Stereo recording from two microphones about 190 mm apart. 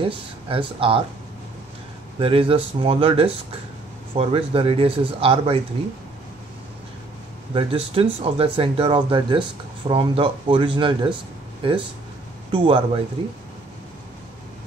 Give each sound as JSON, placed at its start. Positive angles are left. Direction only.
{"t": 0.0, "sound": "speech", "side_deg": -30}
{"t": 2.1, "sound": "speech", "side_deg": -30}
{"t": 7.5, "sound": "speech", "side_deg": -30}